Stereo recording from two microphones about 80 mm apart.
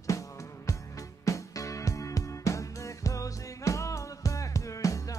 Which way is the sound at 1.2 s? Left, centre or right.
Left.